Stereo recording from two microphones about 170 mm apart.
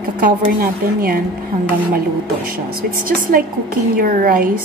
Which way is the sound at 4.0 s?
60° right (ahead or behind).